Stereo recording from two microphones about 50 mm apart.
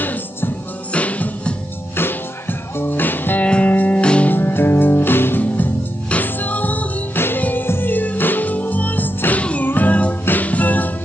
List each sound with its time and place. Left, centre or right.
0.9 s music: left
2.8 s music: left
3.4 s music: left
4.0 s music: left
4.3 s music: left
5.4 s music: left
7.2 s music: left
9.4 s music: left